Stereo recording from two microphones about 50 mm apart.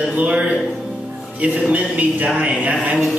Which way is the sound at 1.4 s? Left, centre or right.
Right.